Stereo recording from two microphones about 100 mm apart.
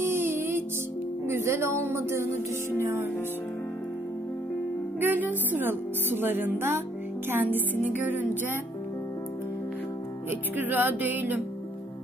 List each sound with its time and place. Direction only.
0.0 s music: 25° right (ahead or behind)
1.3 s speech: 25° right (ahead or behind)
5.0 s speech: 20° right (ahead or behind)
10.5 s music: 20° right (ahead or behind)